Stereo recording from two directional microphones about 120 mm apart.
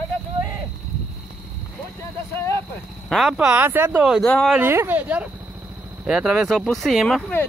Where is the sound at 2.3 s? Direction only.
20° left (ahead or behind).